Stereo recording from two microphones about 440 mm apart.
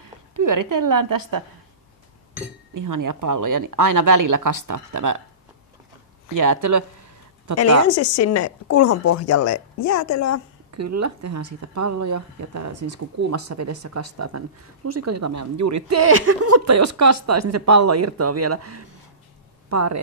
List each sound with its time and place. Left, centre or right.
0.0 s a woman's voice: right
2.7 s speech: right
6.3 s speech: right
7.9 s a woman's voice: left
10.7 s speech: right